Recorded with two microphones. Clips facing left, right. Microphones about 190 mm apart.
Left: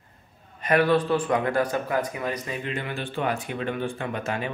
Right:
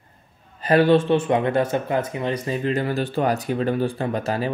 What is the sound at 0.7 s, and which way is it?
Speech, 30° right (ahead or behind).